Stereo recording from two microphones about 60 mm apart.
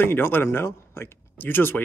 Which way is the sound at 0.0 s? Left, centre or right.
Left.